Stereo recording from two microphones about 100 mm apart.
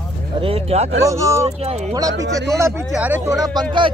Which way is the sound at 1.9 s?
35° right (ahead or behind).